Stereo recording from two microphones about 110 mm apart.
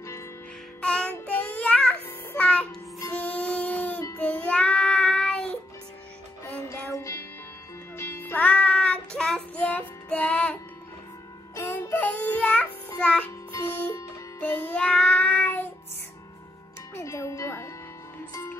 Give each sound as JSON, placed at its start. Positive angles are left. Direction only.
{"t": 0.7, "sound": "child singing", "side_deg": 10}
{"t": 1.2, "sound": "music", "side_deg": 15}
{"t": 4.2, "sound": "child singing", "side_deg": 10}
{"t": 6.9, "sound": "music", "side_deg": 30}
{"t": 11.5, "sound": "child singing", "side_deg": 25}
{"t": 13.5, "sound": "music", "side_deg": 25}
{"t": 16.9, "sound": "music", "side_deg": 25}